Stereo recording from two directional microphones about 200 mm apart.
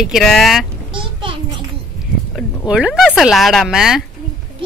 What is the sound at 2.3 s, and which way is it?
A woman's voice, 5° right (ahead or behind).